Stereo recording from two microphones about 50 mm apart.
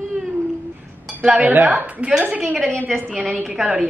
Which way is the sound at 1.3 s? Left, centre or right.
Right.